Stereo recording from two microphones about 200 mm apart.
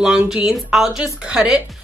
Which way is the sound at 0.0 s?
5° right (ahead or behind).